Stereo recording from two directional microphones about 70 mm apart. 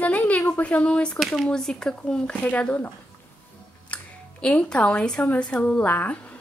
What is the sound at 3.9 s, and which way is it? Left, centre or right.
Speech, centre.